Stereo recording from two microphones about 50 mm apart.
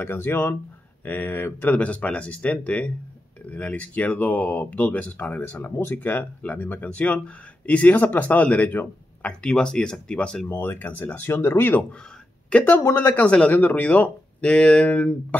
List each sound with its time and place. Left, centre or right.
0.0 s speech: left
1.0 s speech: left
9.2 s speech: centre
10.5 s speech: left
11.2 s speech: left
12.5 s speech: left
12.9 s speech: left
13.2 s speech: left